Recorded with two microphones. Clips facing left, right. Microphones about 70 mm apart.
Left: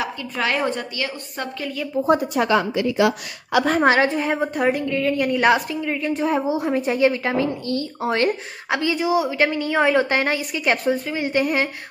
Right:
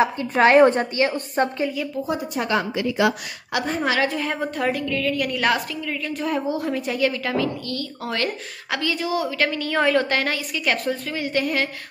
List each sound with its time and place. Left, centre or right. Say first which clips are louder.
0.0 s a woman's voice: right 7 dB; right
2.0 s a woman's voice: left 6 dB; left
3.8 s a woman's voice: left 4 dB; left
4.1 s a woman's voice: left 4 dB; left